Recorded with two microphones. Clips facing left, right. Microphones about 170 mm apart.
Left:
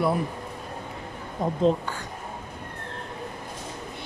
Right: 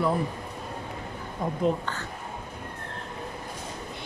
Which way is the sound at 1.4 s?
20° left (ahead or behind).